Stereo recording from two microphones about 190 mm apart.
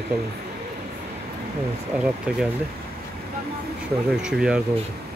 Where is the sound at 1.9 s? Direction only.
5° right (ahead or behind).